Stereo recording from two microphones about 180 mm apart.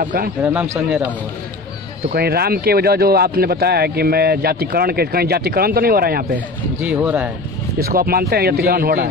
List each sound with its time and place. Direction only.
0.0 s a man's voice: 50° right (ahead or behind)
0.4 s a man's voice: 10° right (ahead or behind)
2.1 s a man's voice: 60° right (ahead or behind)
6.8 s a man's voice: 10° right (ahead or behind)
7.8 s a man's voice: 55° right (ahead or behind)